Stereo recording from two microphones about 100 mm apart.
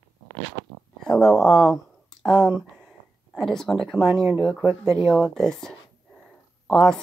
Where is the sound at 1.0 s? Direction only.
5° left (ahead or behind).